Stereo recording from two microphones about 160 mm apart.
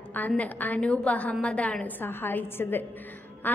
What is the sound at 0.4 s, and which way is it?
A woman's voice, 10° left (ahead or behind).